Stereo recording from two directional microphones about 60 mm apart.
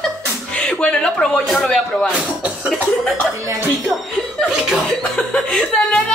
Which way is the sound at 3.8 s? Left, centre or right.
Centre.